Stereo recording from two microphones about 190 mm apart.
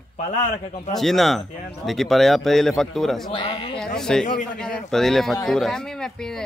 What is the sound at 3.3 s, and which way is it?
Speech, 30° left (ahead or behind).